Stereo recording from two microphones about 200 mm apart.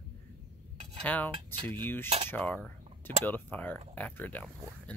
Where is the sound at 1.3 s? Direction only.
25° right (ahead or behind).